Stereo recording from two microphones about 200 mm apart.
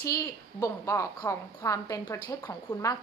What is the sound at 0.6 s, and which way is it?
A woman's voice, 15° left (ahead or behind).